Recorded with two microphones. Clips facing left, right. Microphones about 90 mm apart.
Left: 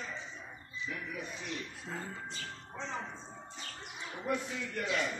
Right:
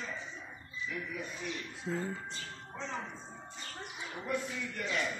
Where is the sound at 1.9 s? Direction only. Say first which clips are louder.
Right 7 dB; centre (ahead or behind).